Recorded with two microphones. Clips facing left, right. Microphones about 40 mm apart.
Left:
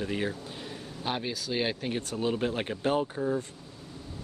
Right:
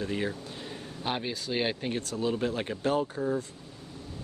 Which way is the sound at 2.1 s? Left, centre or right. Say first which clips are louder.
Even; left.